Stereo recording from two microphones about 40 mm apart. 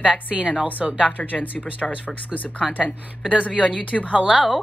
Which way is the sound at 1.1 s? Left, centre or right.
Left.